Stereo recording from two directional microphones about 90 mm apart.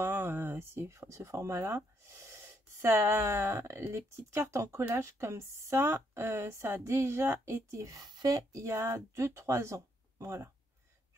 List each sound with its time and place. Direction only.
0.0 s speech: 25° right (ahead or behind)